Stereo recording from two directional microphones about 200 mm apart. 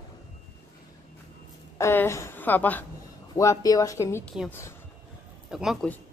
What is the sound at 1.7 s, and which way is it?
A woman's voice, 15° left (ahead or behind).